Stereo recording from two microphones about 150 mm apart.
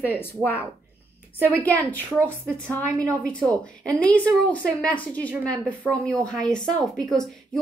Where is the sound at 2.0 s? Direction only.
15° right (ahead or behind).